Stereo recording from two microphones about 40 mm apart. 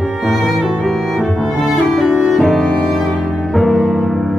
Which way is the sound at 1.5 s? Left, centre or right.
Centre.